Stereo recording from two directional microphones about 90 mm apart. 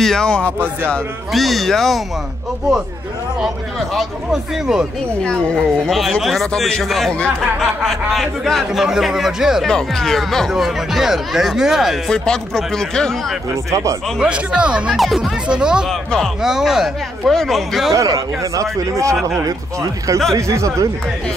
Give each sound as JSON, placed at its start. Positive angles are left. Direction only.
{"t": 0.0, "sound": "speech", "side_deg": 5}
{"t": 1.3, "sound": "speech", "side_deg": 0}
{"t": 3.3, "sound": "speech", "side_deg": 0}
{"t": 5.9, "sound": "speech", "side_deg": 0}
{"t": 13.7, "sound": "speech", "side_deg": -35}
{"t": 14.2, "sound": "speech", "side_deg": -10}
{"t": 15.0, "sound": "speech", "side_deg": 0}
{"t": 15.9, "sound": "speech", "side_deg": 5}
{"t": 16.3, "sound": "speech", "side_deg": -5}
{"t": 17.9, "sound": "speech", "side_deg": -35}